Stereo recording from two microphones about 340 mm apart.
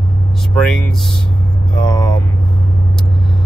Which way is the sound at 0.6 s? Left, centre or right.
Centre.